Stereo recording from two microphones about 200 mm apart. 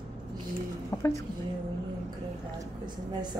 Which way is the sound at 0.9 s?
15° left (ahead or behind).